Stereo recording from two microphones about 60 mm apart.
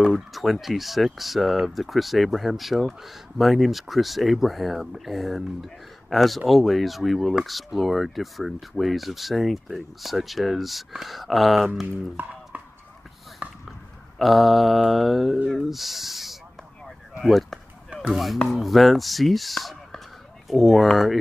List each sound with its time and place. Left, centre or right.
0.1 s speech: centre
12.2 s speech: right
13.7 s a sound: centre
15.4 s speech: centre